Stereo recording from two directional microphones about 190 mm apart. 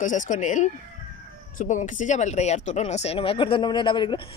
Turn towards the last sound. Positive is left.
turn(degrees=25)  # may be behind; listen again after turning